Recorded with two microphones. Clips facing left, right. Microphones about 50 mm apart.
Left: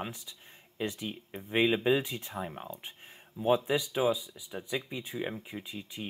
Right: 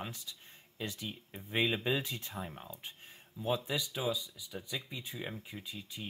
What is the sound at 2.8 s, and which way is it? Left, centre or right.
Speech, left.